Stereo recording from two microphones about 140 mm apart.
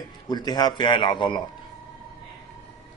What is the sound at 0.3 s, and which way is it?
A man's voice, 30° left (ahead or behind).